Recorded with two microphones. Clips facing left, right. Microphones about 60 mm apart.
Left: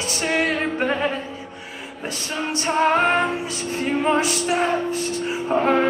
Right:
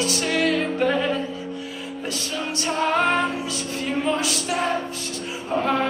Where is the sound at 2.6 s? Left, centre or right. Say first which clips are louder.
Left 3 dB; left.